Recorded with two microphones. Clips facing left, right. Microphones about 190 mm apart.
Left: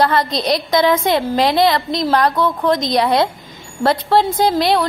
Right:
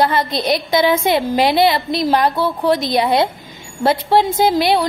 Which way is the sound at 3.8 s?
20° right (ahead or behind).